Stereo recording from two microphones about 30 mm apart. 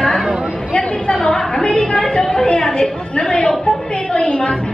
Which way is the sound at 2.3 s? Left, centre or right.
Left.